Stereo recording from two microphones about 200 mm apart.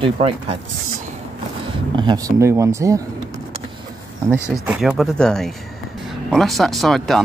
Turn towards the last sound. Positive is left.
turn(degrees=0)  # may be behind; listen again after turning